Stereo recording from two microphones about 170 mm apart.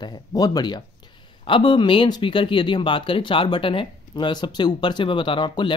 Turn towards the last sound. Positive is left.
turn(degrees=25)  # may be behind; listen again after turning